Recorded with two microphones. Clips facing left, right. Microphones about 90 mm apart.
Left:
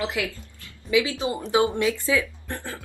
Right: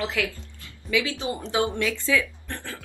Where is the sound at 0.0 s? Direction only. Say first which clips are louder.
Even; 20° left (ahead or behind).